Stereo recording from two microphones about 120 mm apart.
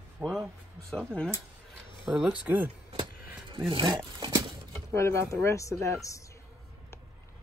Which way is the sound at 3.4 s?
45° right (ahead or behind).